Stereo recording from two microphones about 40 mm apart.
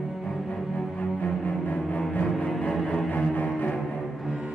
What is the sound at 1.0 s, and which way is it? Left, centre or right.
Cello, left.